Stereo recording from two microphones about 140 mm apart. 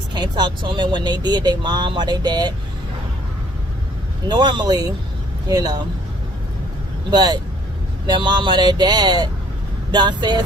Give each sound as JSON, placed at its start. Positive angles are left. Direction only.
{"t": 0.1, "sound": "speech", "side_deg": -30}
{"t": 4.3, "sound": "speech", "side_deg": -30}
{"t": 7.1, "sound": "speech", "side_deg": -30}